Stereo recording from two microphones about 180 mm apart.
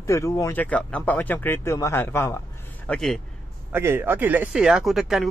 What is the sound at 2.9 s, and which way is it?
Speech, centre (ahead or behind).